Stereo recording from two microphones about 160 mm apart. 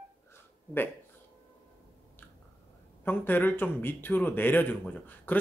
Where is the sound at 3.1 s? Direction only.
10° left (ahead or behind).